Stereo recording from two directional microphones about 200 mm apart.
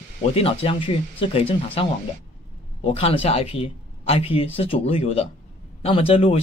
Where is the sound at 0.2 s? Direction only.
30° left (ahead or behind).